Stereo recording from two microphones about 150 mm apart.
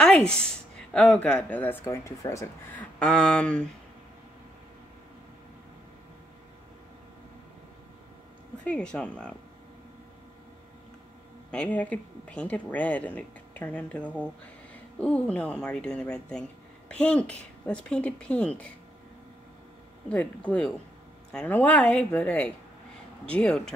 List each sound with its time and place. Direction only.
0.0 s speech: 5° left (ahead or behind)
3.0 s speech: 5° left (ahead or behind)
8.6 s speech: 5° left (ahead or behind)
11.5 s speech: 10° left (ahead or behind)
20.1 s speech: 10° left (ahead or behind)